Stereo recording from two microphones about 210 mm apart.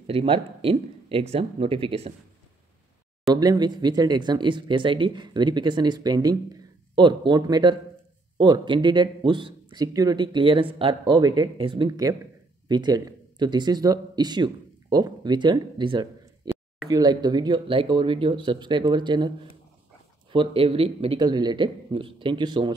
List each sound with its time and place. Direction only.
0.0 s speech: 25° right (ahead or behind)
3.3 s speech: 20° right (ahead or behind)